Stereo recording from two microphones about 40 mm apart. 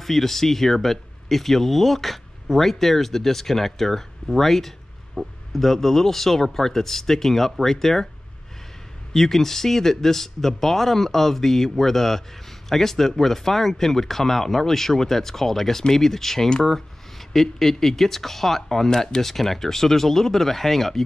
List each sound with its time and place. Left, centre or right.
0.0 s speech: centre
9.1 s speech: centre
17.3 s speech: centre